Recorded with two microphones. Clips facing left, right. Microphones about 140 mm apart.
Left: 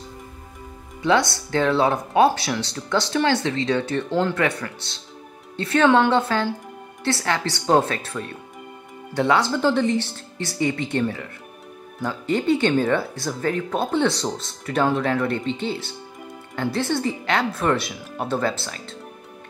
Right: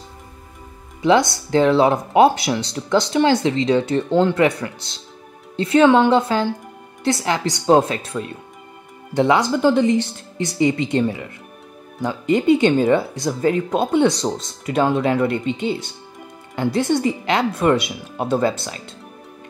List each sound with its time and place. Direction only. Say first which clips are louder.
1.0 s speech: right 4 dB; 20° right (ahead or behind)